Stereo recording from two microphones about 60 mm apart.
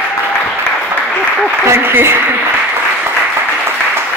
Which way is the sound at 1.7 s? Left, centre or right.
Right.